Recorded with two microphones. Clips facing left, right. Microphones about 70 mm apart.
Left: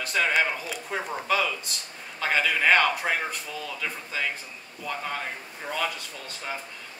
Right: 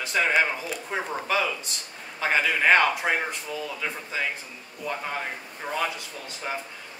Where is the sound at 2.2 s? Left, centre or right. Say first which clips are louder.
Right 1 dB; right.